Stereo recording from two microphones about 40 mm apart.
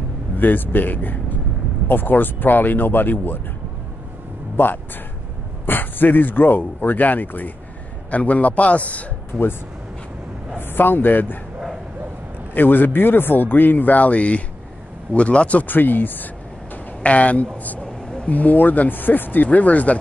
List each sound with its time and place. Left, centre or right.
0.4 s speech: left
4.6 s a man's voice: left
10.6 s a man's voice: left
12.5 s a man's voice: left
15.6 s speech: left
17.0 s a man's voice: left
17.8 s a sound: centre
18.2 s speech: left